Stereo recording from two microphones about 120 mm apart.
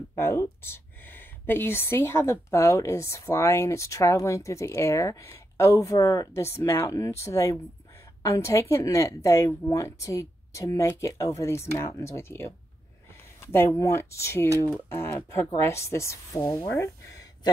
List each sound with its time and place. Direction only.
0.1 s speech: 25° left (ahead or behind)